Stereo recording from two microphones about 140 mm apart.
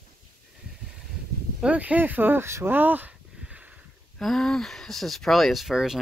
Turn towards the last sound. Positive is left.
turn(degrees=-5)  # may be behind; listen again after turning